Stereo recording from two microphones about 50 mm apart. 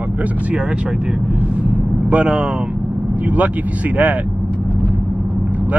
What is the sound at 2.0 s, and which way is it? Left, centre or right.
Speech, right.